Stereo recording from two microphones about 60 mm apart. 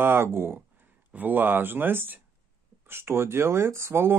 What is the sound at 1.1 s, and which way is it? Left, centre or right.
Speech, right.